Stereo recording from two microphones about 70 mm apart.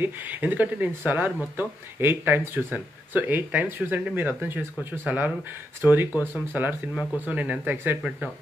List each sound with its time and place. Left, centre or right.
0.0 s speech: right